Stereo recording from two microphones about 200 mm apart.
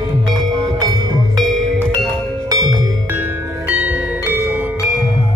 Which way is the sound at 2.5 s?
15° right (ahead or behind).